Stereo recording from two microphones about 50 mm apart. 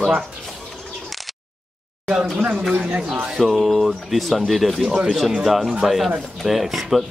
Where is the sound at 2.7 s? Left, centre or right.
Right.